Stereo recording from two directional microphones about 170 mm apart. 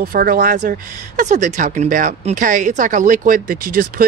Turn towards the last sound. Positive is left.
turn(degrees=-60)  # may be behind; listen again after turning